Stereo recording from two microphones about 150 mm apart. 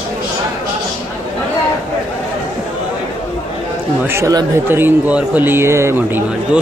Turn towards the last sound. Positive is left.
turn(degrees=-15)  # may be behind; listen again after turning